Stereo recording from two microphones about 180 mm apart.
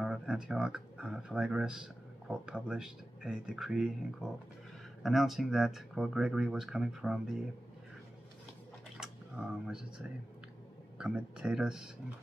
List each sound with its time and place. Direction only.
0.0 s speech: 5° right (ahead or behind)
9.0 s speech: 5° right (ahead or behind)